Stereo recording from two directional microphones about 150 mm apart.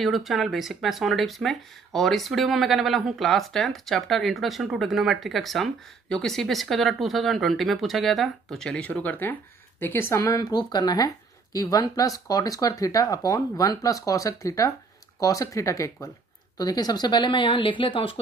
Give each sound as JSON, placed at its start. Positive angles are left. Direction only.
{"t": 0.0, "sound": "speech", "side_deg": 0}